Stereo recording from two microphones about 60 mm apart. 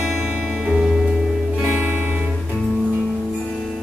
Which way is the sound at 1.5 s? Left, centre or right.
Right.